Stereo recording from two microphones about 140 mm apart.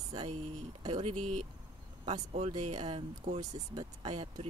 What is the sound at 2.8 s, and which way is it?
Speech, 50° right (ahead or behind).